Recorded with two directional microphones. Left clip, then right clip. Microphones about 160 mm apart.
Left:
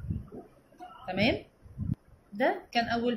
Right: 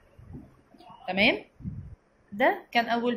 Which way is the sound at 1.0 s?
15° right (ahead or behind).